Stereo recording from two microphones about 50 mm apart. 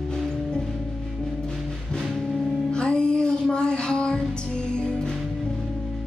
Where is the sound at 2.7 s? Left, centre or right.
Centre.